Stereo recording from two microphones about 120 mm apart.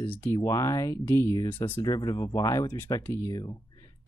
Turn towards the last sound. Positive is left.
turn(degrees=30)  # may be behind; listen again after turning